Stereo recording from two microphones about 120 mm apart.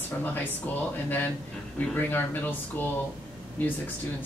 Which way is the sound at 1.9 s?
15° left (ahead or behind).